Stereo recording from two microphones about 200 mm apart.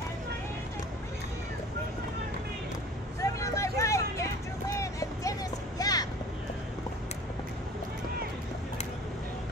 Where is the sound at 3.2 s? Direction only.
15° left (ahead or behind).